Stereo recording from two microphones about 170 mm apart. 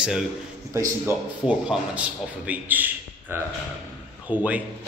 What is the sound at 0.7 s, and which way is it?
Speech, 20° right (ahead or behind).